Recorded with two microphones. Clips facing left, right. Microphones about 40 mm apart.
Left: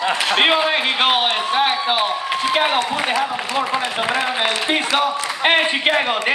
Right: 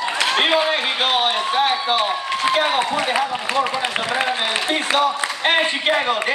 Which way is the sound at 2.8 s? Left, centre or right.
Centre.